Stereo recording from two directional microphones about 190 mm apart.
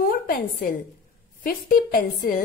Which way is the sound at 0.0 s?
50° left (ahead or behind).